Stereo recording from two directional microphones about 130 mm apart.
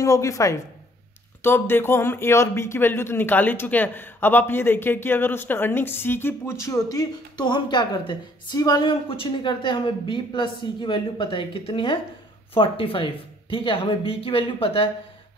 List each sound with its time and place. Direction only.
0.0 s a man's voice: 25° left (ahead or behind); by 14.9 s 45° left (ahead or behind)